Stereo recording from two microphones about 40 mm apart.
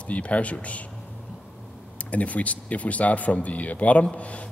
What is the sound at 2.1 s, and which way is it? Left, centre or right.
Speech, left.